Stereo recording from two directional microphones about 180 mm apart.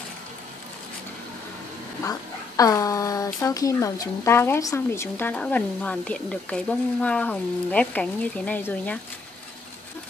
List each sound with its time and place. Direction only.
2.0 s speech: 20° left (ahead or behind)